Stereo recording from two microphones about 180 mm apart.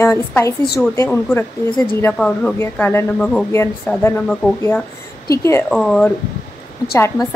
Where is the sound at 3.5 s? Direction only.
15° left (ahead or behind).